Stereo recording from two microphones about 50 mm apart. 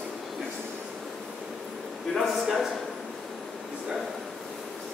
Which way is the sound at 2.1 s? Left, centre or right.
Centre.